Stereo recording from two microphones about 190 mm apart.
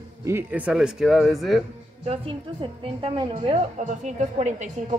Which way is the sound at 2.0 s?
30° right (ahead or behind).